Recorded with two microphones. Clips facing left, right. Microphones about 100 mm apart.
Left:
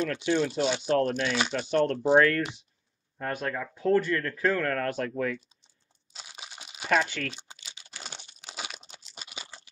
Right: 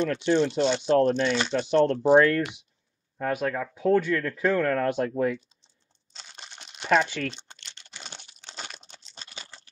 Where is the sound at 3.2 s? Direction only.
5° right (ahead or behind).